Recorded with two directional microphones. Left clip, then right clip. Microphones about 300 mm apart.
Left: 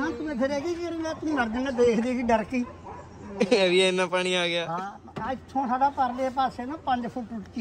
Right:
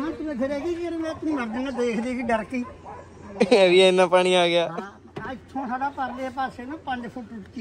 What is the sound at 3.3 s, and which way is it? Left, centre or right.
A man's voice, centre.